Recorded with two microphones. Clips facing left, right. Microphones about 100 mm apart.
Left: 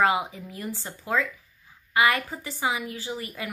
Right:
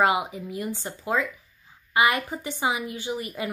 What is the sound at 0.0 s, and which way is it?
A woman's voice, 15° right (ahead or behind).